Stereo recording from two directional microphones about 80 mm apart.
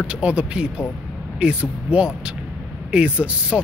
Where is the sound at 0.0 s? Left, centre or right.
Centre.